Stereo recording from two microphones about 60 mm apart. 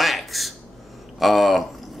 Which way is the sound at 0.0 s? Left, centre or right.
Centre.